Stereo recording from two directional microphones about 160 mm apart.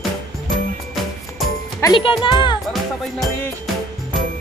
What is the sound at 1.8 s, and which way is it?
Speech, 30° left (ahead or behind).